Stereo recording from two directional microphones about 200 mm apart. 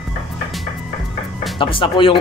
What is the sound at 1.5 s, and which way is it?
Speech, 25° left (ahead or behind).